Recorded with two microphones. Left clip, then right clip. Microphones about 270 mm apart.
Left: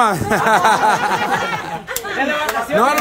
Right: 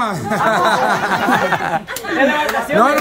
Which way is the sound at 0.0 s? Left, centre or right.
Centre.